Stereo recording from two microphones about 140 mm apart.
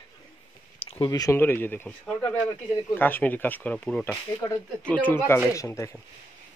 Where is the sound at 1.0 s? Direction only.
25° left (ahead or behind); by 4.0 s 5° left (ahead or behind).